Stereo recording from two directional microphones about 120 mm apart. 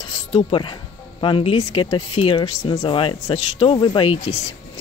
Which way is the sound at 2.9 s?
45° left (ahead or behind).